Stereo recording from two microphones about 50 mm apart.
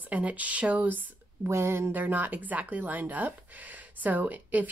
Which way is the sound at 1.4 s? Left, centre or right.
Right.